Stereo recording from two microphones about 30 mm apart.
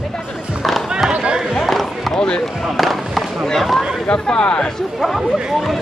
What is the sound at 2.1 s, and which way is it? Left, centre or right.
Speech, left.